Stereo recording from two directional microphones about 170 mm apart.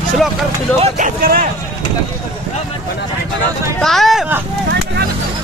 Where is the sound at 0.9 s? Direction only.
55° right (ahead or behind).